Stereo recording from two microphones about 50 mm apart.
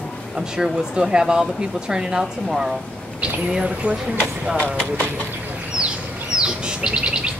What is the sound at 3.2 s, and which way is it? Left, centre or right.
Speech, centre.